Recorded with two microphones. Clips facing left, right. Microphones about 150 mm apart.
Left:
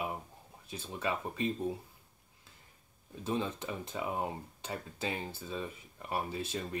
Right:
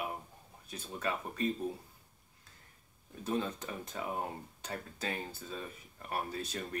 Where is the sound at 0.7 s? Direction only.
25° left (ahead or behind).